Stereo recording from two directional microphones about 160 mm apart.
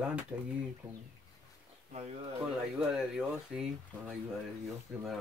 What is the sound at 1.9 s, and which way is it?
Speech, 40° right (ahead or behind).